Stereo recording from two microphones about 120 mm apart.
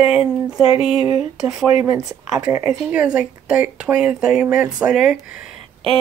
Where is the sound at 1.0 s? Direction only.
50° left (ahead or behind).